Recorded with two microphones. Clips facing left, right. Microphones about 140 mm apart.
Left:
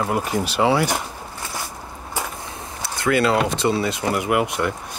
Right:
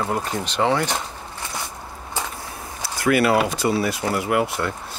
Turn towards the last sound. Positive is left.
turn(degrees=20)  # may be behind; listen again after turning